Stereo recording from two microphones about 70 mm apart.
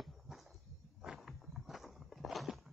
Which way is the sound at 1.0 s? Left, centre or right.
Centre.